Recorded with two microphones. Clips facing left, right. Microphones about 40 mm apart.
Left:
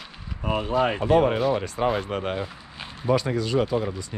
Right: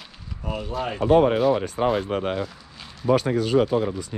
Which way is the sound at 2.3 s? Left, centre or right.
Left.